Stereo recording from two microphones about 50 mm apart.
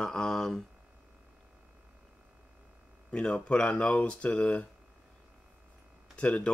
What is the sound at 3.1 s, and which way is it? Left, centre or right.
Speech, left.